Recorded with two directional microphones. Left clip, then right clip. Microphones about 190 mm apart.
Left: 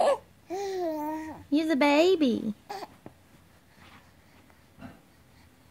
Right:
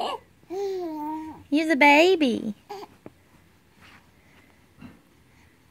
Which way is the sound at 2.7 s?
15° left (ahead or behind).